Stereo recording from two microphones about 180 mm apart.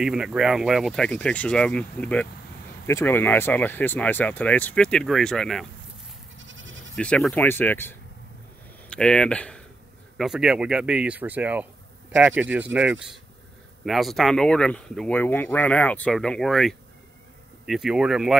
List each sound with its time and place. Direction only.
0.0 s speech: 5° right (ahead or behind)
6.3 s goat: 90° right
7.0 s speech: 5° left (ahead or behind)